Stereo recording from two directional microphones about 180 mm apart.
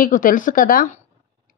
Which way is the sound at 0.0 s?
50° left (ahead or behind).